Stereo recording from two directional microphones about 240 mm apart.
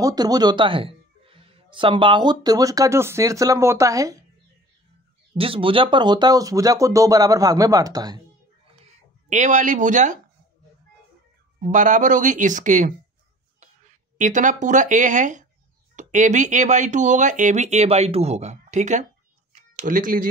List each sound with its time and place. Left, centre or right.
0.0 s speech: centre
5.4 s speech: right
9.3 s speech: right
11.6 s speech: right